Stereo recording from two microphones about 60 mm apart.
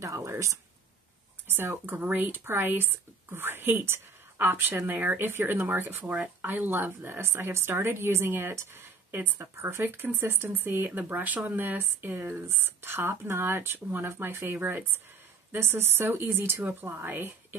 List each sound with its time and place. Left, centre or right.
0.0 s speech: right
1.5 s a woman's voice: right